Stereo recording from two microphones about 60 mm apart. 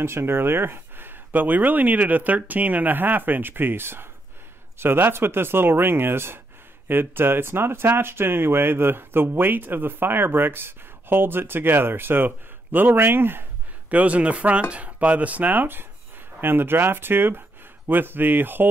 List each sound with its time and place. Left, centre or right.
0.0 s speech: right